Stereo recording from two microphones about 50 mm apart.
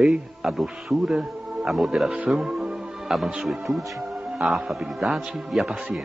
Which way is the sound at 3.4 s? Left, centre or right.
Centre.